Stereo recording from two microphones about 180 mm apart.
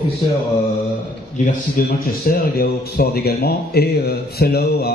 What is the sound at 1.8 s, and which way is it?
Speech, 50° left (ahead or behind).